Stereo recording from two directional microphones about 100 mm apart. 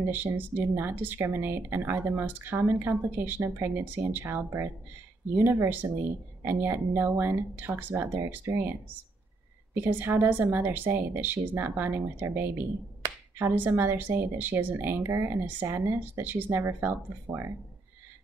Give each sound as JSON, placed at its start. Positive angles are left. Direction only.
{"t": 0.0, "sound": "speech", "side_deg": -20}
{"t": 9.8, "sound": "speech", "side_deg": -20}